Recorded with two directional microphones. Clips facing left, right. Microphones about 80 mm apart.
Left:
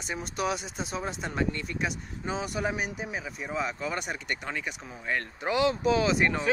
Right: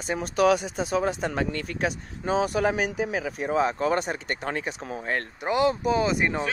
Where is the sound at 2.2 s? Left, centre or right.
Right.